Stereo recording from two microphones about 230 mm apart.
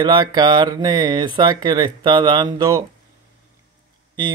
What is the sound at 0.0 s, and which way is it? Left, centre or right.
Speech, centre.